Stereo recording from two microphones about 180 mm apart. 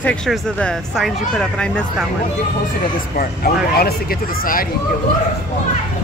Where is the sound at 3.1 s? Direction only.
55° left (ahead or behind).